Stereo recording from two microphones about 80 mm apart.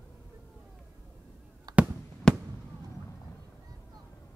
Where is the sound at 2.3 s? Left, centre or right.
Centre.